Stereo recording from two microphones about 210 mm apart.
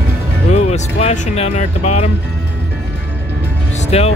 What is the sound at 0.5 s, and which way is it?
Speech, 30° left (ahead or behind).